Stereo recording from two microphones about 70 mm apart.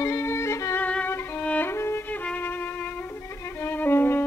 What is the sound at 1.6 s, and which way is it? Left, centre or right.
Music, left.